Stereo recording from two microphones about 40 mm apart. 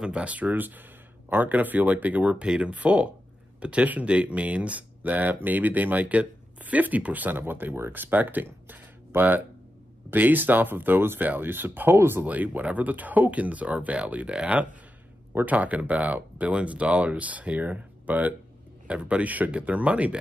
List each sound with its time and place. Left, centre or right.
0.0 s speech: right
7.3 s speech: right
7.9 s speech: right
12.0 s speech: right
12.3 s speech: right
15.4 s speech: right